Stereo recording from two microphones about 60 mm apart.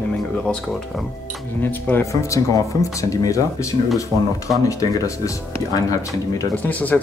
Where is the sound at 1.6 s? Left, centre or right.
Left.